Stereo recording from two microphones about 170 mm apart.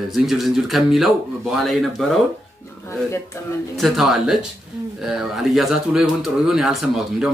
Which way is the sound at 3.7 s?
Centre (ahead or behind).